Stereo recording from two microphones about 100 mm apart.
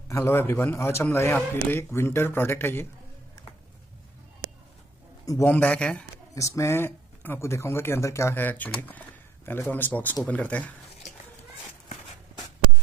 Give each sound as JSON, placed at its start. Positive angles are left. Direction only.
{"t": 0.1, "sound": "speech", "side_deg": 25}
{"t": 5.4, "sound": "a man's voice", "side_deg": 15}
{"t": 6.3, "sound": "a man's voice", "side_deg": 30}